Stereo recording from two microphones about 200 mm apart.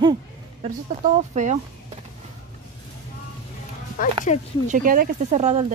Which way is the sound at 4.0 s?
45° left (ahead or behind).